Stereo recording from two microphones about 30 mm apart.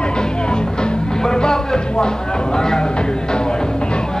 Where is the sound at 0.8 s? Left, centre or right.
Left.